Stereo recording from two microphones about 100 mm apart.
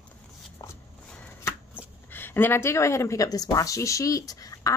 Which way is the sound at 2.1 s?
20° left (ahead or behind).